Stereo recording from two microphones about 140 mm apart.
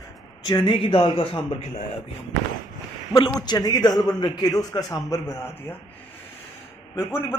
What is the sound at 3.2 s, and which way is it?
A man's voice, 30° left (ahead or behind).